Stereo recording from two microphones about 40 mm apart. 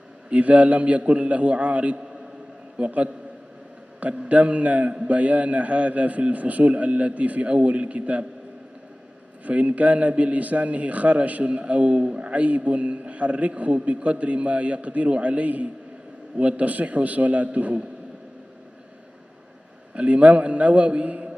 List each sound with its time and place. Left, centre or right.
0.3 s a man's voice: right
9.4 s a man's voice: right
19.9 s a man's voice: right